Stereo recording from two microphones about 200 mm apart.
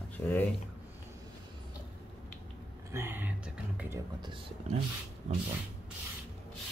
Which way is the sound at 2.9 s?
10° right (ahead or behind).